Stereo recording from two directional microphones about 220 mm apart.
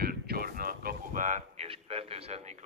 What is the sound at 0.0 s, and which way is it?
A man's voice, 45° right (ahead or behind).